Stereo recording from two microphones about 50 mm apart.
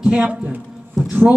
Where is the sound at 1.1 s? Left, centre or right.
Right.